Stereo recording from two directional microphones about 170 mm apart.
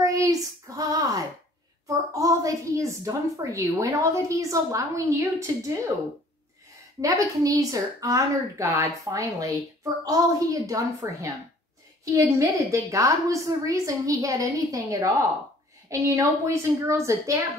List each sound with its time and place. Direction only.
0.0 s a woman's voice: 20° right (ahead or behind)
7.0 s a woman's voice: 20° right (ahead or behind)